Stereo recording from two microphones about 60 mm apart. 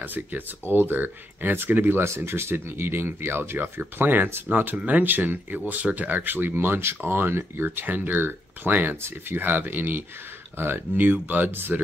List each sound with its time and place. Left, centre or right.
0.0 s speech: right